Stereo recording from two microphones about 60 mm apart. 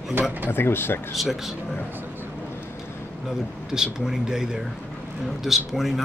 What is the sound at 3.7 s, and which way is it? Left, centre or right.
Speech, centre.